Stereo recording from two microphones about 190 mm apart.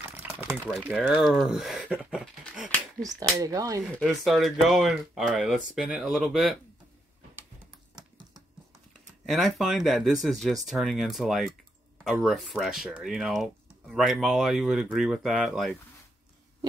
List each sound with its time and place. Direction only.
0.0 s boiling: 10° right (ahead or behind)
0.8 s speech: 5° right (ahead or behind)
3.0 s speech: 20° right (ahead or behind)
3.9 s speech: centre (ahead or behind)
9.2 s speech: centre (ahead or behind)